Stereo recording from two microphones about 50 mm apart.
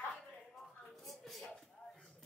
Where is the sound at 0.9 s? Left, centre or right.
Centre.